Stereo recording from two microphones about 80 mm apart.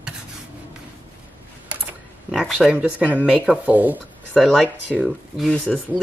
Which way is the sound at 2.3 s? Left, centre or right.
Centre.